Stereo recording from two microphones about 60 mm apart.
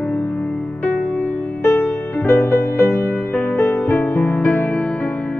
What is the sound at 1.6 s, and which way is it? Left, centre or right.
Music, left.